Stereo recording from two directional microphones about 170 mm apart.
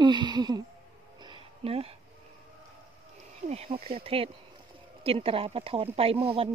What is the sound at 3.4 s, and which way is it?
Speech, 35° right (ahead or behind).